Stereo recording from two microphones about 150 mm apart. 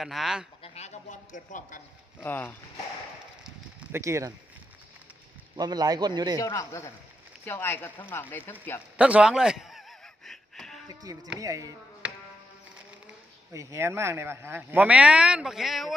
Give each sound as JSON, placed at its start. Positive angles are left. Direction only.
{"t": 0.0, "sound": "speech", "side_deg": 0}
{"t": 0.6, "sound": "a sound", "side_deg": 45}
{"t": 2.2, "sound": "speech", "side_deg": 15}
{"t": 3.9, "sound": "speech", "side_deg": -20}
{"t": 5.6, "sound": "speech", "side_deg": -25}
{"t": 6.3, "sound": "a man's voice", "side_deg": 20}
{"t": 8.9, "sound": "a sound", "side_deg": -5}
{"t": 10.9, "sound": "speech", "side_deg": -25}
{"t": 13.5, "sound": "speech", "side_deg": -20}